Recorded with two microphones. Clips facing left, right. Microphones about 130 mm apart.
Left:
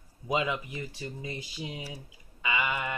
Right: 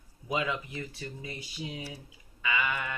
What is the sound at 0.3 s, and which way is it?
Speech, 20° left (ahead or behind).